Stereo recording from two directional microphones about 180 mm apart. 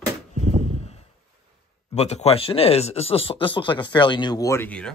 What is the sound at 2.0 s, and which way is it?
Speech, 35° left (ahead or behind).